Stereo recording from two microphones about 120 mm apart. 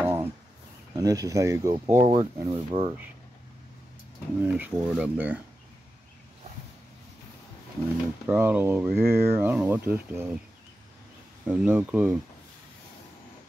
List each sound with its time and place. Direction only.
0.0 s a sound: 15° right (ahead or behind)
0.9 s speech: 30° right (ahead or behind)
2.5 s speech: 55° right (ahead or behind)
4.4 s speech: 15° right (ahead or behind)
8.3 s speech: 20° right (ahead or behind)
11.4 s speech: 10° right (ahead or behind)